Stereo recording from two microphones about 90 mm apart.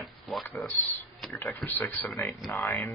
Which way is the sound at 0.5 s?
15° left (ahead or behind).